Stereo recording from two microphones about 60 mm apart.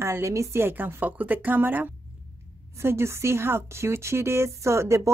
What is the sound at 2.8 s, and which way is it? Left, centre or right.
Speech, right.